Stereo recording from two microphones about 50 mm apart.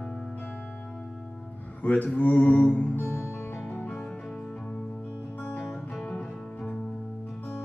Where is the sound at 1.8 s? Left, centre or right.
Left.